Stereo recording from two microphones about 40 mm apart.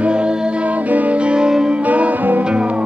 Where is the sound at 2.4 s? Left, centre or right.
Right.